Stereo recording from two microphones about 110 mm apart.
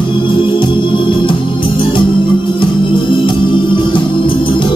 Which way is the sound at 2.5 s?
45° left (ahead or behind).